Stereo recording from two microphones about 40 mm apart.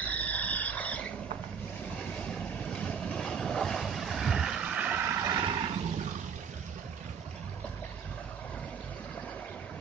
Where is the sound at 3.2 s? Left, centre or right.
Centre.